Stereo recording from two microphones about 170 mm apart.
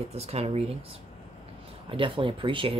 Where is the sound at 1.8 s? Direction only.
30° right (ahead or behind).